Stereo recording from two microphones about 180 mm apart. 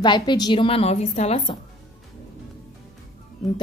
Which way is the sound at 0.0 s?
25° left (ahead or behind).